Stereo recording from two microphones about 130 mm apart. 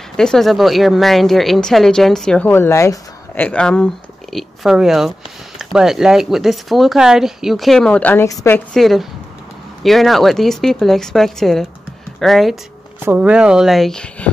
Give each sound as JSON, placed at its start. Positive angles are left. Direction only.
{"t": 0.2, "sound": "a woman's voice", "side_deg": 5}
{"t": 8.7, "sound": "a woman's voice", "side_deg": 0}
{"t": 13.0, "sound": "a woman's voice", "side_deg": -10}